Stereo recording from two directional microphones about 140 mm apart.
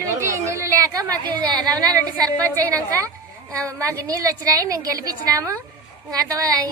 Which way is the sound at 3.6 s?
25° right (ahead or behind).